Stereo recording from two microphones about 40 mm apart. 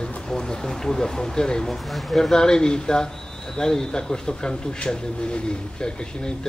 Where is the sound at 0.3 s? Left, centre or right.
Centre.